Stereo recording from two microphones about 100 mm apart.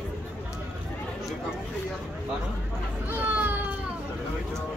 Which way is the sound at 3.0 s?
15° right (ahead or behind).